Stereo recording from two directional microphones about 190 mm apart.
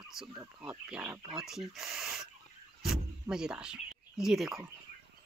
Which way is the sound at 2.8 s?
5° right (ahead or behind).